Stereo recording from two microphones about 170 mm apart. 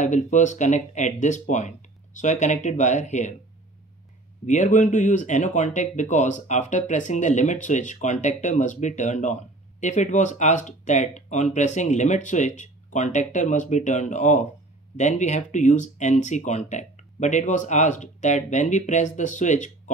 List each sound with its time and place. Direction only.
0.0 s speech: 45° left (ahead or behind)
4.5 s speech: 45° left (ahead or behind)